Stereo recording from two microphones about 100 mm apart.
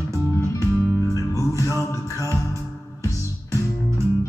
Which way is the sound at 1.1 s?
35° left (ahead or behind).